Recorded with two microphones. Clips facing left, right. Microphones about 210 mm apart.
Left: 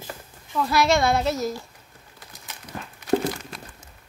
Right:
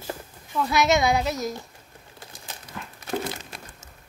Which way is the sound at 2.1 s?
30° right (ahead or behind).